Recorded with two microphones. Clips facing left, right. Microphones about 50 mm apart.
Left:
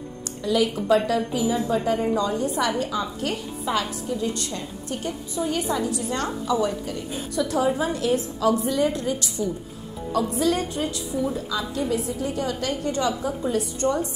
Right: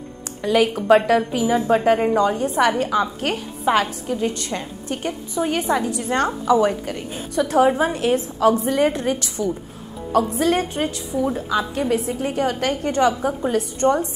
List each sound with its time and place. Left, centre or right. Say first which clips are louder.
0.4 s a woman's voice: right 4 dB; right
2.1 s a woman's voice: right 5 dB; right
2.8 s a woman's voice: right 6 dB; right
7.2 s a woman's voice: right 7 dB; right